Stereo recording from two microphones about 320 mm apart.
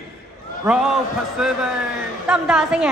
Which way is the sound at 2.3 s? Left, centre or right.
Centre.